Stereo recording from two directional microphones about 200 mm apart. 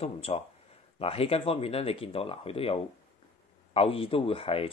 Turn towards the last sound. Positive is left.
turn(degrees=30)  # may be behind; listen again after turning